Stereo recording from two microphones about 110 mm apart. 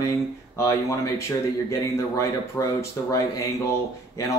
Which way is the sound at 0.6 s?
30° left (ahead or behind).